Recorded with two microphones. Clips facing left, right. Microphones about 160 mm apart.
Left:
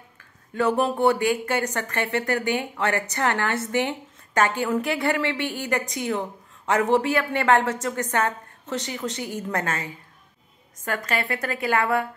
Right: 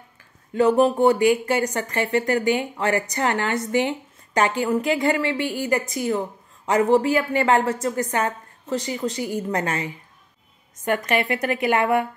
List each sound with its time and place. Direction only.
1.2 s speech: 50° left (ahead or behind)
1.5 s speech: 10° right (ahead or behind)
10.9 s a woman's voice: 20° right (ahead or behind)